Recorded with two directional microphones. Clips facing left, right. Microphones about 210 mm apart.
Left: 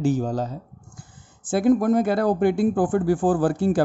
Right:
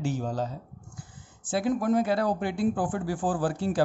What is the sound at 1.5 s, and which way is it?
Speech, 50° left (ahead or behind).